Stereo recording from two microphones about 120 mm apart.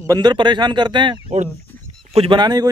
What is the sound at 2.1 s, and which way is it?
Speech, 55° right (ahead or behind).